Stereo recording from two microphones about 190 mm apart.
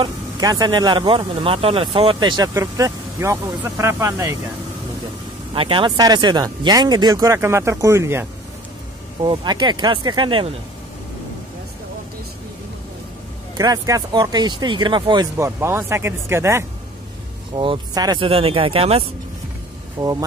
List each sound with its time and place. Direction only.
0.0 s speech: 20° right (ahead or behind)
5.5 s speech: 25° right (ahead or behind)
9.2 s speech: 25° right (ahead or behind)
13.6 s speech: 20° right (ahead or behind)
15.3 s speech: 15° right (ahead or behind); by 19.0 s 30° right (ahead or behind)
20.0 s speech: 20° right (ahead or behind)